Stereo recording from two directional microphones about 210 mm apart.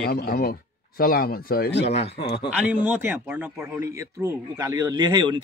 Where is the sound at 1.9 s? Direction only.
30° left (ahead or behind).